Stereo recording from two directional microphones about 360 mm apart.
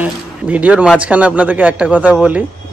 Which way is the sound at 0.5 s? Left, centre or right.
Centre.